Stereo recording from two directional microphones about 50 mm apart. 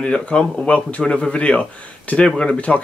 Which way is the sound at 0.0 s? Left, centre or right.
Left.